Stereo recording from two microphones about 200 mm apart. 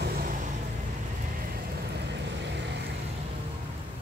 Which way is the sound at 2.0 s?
60° right (ahead or behind).